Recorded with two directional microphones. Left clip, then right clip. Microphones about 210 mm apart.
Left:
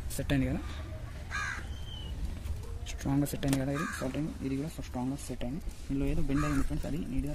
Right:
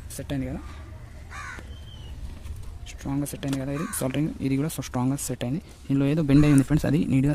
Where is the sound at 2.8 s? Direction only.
5° right (ahead or behind).